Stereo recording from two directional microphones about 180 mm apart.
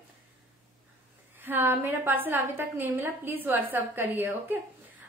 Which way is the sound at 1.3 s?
10° right (ahead or behind).